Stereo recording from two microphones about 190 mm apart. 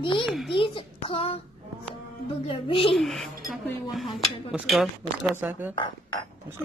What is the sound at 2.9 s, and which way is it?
Speech, centre (ahead or behind).